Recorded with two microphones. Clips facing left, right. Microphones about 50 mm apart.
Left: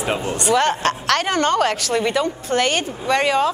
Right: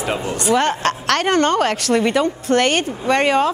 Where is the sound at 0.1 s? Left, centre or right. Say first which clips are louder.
Even; centre.